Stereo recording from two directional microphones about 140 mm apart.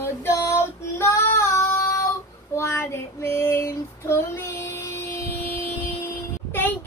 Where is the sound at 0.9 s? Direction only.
20° left (ahead or behind).